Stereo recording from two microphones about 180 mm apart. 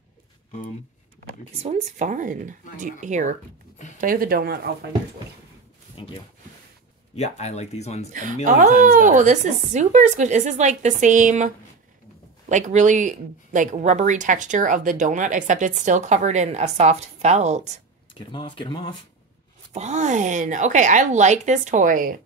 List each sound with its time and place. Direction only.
1.6 s speech: 40° right (ahead or behind); by 4.7 s 55° right (ahead or behind)
6.0 s speech: 25° left (ahead or behind)
7.2 s speech: 40° left (ahead or behind)
8.1 s speech: 45° right (ahead or behind)
18.1 s speech: 25° left (ahead or behind)
19.7 s speech: 40° right (ahead or behind)